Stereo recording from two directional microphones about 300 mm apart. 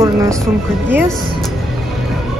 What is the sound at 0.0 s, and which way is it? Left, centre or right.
Speech, centre.